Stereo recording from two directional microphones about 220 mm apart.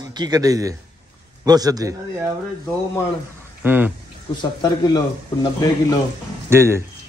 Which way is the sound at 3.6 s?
10° right (ahead or behind).